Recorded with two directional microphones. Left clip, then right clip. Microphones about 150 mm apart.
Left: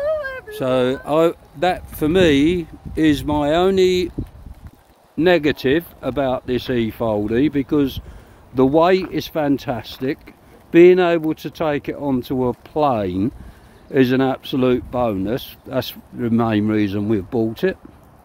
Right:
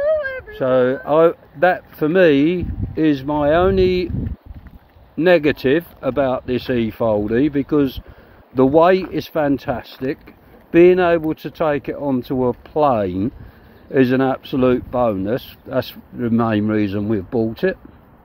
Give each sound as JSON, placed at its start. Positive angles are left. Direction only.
{"t": 0.0, "sound": "speech", "side_deg": 40}
{"t": 5.1, "sound": "speech", "side_deg": 25}